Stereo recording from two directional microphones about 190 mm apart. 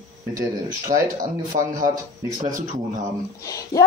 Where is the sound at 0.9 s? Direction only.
45° right (ahead or behind).